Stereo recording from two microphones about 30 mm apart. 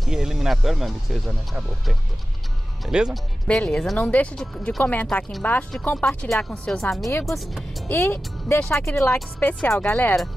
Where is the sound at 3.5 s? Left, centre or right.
Left.